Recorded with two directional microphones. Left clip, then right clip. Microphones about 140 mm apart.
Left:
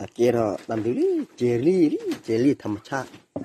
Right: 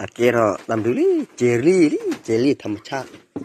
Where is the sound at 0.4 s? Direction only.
10° right (ahead or behind).